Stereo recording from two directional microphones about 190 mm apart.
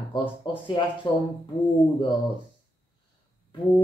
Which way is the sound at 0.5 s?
25° left (ahead or behind).